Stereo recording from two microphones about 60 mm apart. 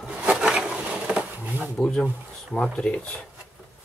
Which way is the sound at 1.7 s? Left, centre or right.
Centre.